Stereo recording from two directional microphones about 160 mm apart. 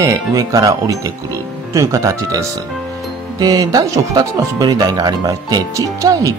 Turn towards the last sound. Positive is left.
turn(degrees=-20)  # may be behind; listen again after turning